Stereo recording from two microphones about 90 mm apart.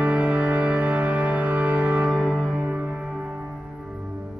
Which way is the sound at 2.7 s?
15° right (ahead or behind).